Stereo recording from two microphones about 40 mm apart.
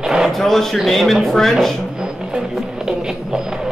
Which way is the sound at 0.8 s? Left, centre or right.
Centre.